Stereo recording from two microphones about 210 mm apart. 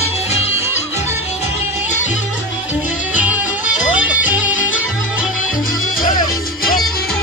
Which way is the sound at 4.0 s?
5° right (ahead or behind).